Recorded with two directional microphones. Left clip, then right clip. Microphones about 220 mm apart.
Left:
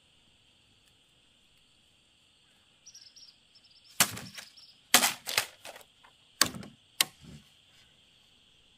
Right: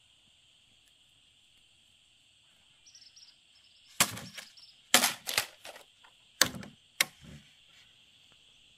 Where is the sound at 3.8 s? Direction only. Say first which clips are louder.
Left 1 dB; 10° left (ahead or behind).